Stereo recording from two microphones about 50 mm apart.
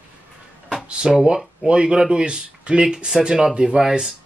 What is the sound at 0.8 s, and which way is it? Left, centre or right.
Speech, centre.